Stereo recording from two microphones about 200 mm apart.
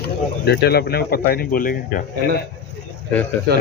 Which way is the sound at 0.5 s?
55° left (ahead or behind).